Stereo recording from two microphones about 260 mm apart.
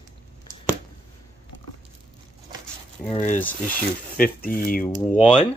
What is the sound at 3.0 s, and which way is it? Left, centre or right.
Speech, left.